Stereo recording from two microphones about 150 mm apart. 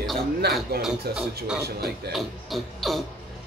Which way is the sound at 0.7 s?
90° right.